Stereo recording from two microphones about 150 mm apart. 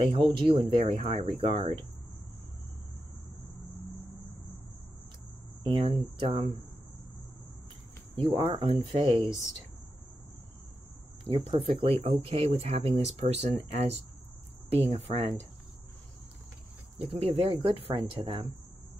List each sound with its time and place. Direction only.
0.0 s speech: 35° right (ahead or behind)
5.7 s speech: 35° right (ahead or behind)
8.2 s speech: 35° right (ahead or behind)
11.5 s speech: 40° right (ahead or behind)
17.0 s speech: 45° right (ahead or behind)